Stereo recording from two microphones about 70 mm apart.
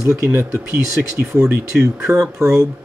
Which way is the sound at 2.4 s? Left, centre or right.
Right.